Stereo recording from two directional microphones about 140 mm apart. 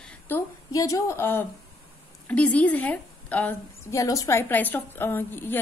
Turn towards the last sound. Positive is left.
turn(degrees=15)  # may be behind; listen again after turning